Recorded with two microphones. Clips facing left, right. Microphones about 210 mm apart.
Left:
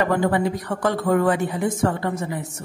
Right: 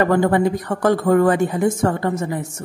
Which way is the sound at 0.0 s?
50° right (ahead or behind).